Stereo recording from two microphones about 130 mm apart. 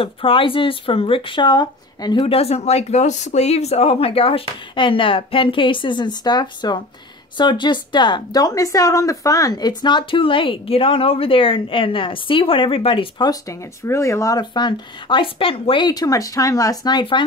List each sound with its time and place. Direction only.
0.0 s a woman's voice: 45° left (ahead or behind)
2.2 s a woman's voice: 50° left (ahead or behind)
13.3 s a woman's voice: 25° left (ahead or behind)